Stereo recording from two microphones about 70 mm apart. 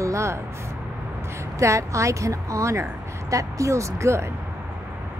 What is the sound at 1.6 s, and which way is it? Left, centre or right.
Speech, right.